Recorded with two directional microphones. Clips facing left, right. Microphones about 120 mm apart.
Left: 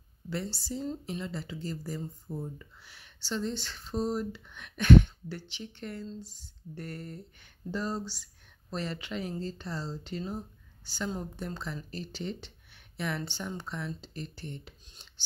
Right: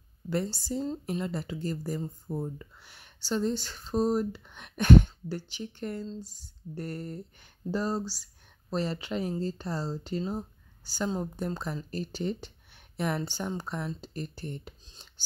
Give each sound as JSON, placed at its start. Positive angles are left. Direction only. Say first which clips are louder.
{"t": 0.3, "sound": "speech", "louder": "right 5 dB", "side_deg": -50}